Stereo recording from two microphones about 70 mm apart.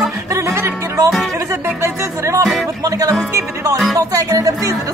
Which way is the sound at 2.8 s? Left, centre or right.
Right.